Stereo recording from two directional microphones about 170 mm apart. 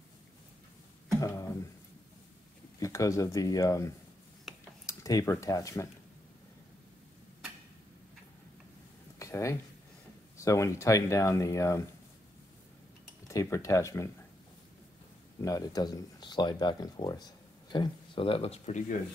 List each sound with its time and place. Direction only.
1.2 s speech: 15° left (ahead or behind)
2.8 s speech: 20° left (ahead or behind)
4.5 s a sound: centre (ahead or behind)
4.8 s speech: 20° left (ahead or behind)
9.2 s a sound: 15° left (ahead or behind)
10.3 s speech: 20° left (ahead or behind)
13.3 s speech: 20° left (ahead or behind)
15.4 s speech: 20° left (ahead or behind); by 18.8 s 35° left (ahead or behind)